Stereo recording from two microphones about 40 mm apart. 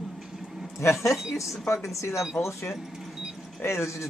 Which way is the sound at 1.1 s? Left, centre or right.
Centre.